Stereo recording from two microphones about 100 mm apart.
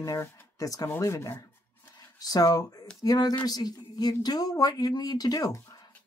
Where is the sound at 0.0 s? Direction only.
35° left (ahead or behind).